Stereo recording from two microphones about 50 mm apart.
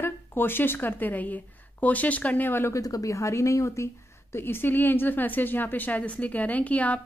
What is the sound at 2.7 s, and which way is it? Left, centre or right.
Speech, left.